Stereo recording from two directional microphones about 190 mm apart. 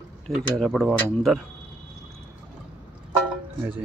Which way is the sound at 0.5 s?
5° left (ahead or behind).